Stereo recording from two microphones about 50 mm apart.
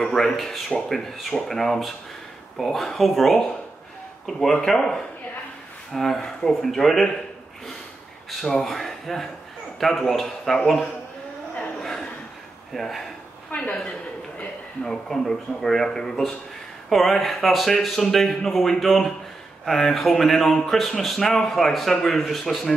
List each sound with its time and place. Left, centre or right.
0.0 s speech: centre
8.3 s speech: centre
11.8 s a sound: centre
12.7 s speech: centre
13.5 s a sound: left
14.9 s speech: centre